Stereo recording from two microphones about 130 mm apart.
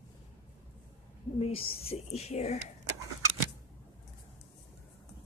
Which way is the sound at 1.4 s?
50° left (ahead or behind).